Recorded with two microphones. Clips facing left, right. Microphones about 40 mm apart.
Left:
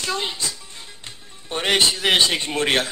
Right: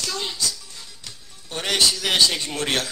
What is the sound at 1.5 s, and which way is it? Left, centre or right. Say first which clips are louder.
A man's voice: left 3 dB; left.